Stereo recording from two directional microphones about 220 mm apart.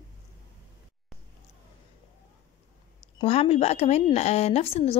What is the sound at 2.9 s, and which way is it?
Speech, 25° left (ahead or behind).